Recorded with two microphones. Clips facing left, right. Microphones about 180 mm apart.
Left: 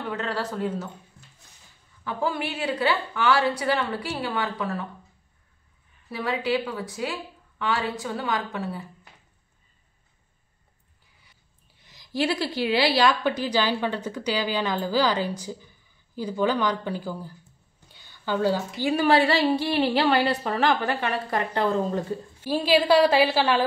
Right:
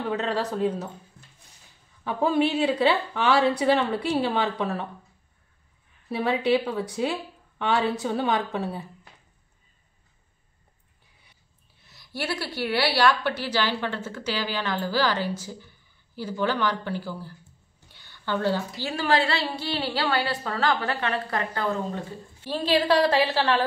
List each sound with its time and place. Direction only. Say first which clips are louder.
0.1 s a woman's voice: right 2 dB; 20° right (ahead or behind)
2.0 s a woman's voice: right 5 dB; 25° right (ahead or behind)
6.0 s a woman's voice: right 3 dB; 25° right (ahead or behind)
12.2 s a woman's voice: left 5 dB; 15° left (ahead or behind)